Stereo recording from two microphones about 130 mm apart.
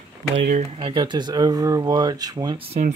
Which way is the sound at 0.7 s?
40° right (ahead or behind).